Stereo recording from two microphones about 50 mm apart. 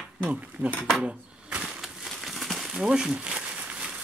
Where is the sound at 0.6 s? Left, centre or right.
Right.